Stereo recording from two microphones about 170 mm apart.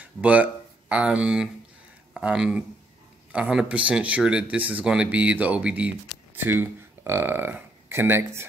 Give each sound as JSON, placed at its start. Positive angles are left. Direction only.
{"t": 0.0, "sound": "speech", "side_deg": -10}